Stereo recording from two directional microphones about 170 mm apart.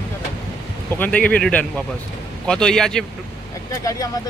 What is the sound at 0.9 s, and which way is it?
Speech, 10° left (ahead or behind).